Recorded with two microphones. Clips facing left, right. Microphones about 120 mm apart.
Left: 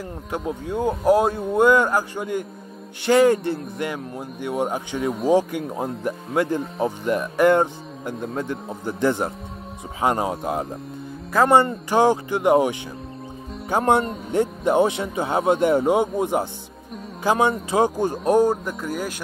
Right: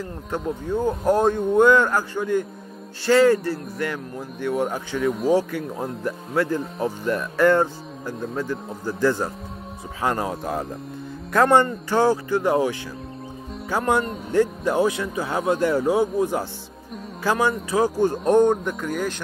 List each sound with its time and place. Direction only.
0.7 s a man's voice: 15° left (ahead or behind)
11.6 s a man's voice: 15° left (ahead or behind)
18.1 s speech: 5° left (ahead or behind)